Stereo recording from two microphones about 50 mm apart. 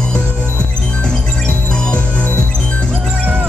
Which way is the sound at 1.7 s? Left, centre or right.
Left.